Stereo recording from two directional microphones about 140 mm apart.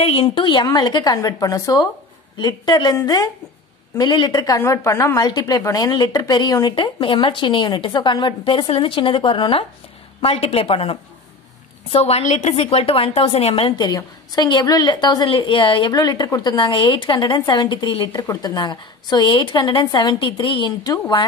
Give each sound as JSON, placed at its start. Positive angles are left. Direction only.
{"t": 0.0, "sound": "a woman's voice", "side_deg": 45}
{"t": 4.0, "sound": "a woman's voice", "side_deg": 35}
{"t": 18.2, "sound": "a woman's voice", "side_deg": 25}